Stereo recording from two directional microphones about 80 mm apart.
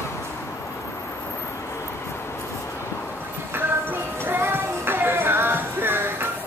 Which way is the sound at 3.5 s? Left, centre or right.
Right.